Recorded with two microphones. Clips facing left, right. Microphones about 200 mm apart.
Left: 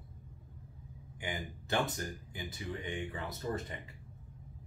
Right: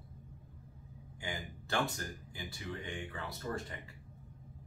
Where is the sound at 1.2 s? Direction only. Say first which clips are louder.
Left 2 dB; 20° left (ahead or behind).